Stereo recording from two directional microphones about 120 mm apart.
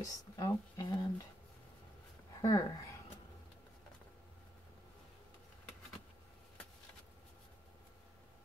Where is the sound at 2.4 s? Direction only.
30° left (ahead or behind).